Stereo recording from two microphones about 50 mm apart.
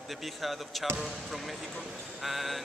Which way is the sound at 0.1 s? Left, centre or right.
Centre.